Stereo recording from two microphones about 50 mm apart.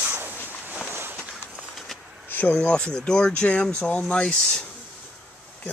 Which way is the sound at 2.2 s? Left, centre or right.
Left.